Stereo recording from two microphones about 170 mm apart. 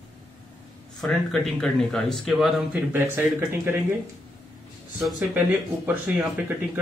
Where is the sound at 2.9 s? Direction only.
15° right (ahead or behind).